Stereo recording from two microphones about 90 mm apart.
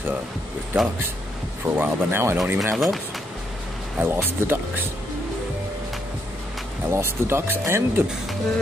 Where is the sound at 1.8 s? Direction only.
25° right (ahead or behind).